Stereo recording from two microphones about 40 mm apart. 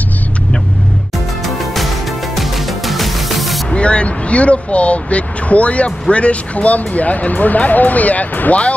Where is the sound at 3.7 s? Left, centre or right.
Left.